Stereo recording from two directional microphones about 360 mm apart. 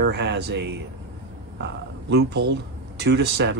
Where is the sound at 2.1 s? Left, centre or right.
Right.